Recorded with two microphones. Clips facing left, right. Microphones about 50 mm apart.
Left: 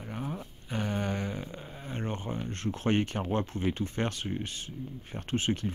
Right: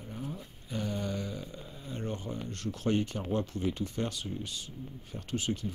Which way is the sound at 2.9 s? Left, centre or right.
Left.